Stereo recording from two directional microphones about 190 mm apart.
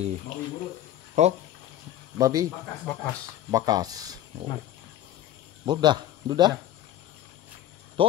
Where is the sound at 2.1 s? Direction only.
20° right (ahead or behind).